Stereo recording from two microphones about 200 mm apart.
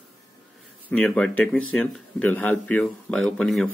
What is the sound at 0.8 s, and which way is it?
Speech, 5° left (ahead or behind).